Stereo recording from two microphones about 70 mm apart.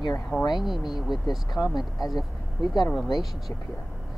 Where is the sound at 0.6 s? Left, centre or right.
Centre.